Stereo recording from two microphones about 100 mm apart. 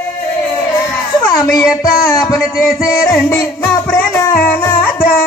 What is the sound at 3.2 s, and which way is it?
Music, 25° left (ahead or behind).